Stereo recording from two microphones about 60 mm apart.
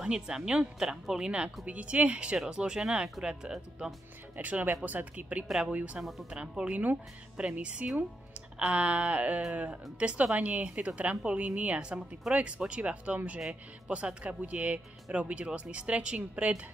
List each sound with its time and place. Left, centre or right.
0.0 s speech: centre
4.4 s speech: right
6.3 s speech: centre